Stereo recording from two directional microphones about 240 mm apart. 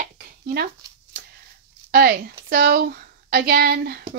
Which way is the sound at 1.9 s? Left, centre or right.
Right.